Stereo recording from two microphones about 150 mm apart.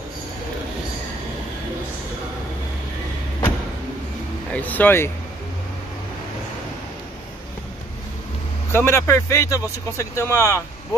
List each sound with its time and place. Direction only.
4.5 s speech: 10° left (ahead or behind)
8.7 s speech: 20° left (ahead or behind)